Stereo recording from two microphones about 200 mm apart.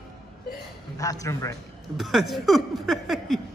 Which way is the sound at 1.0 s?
15° left (ahead or behind).